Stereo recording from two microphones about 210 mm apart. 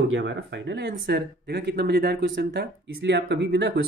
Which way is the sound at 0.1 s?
60° right (ahead or behind).